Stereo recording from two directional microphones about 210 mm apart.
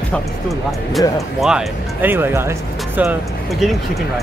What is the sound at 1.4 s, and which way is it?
Speech, 5° right (ahead or behind).